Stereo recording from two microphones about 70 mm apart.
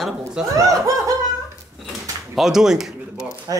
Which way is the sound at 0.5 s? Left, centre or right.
Right.